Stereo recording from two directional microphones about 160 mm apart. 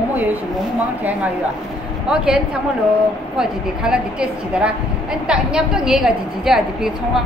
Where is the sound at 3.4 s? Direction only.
5° right (ahead or behind).